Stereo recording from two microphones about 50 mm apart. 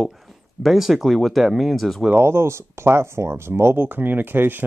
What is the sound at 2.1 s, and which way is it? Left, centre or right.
Speech, right.